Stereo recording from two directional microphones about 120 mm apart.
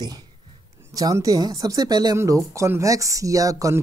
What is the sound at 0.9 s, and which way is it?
Speech, 30° right (ahead or behind).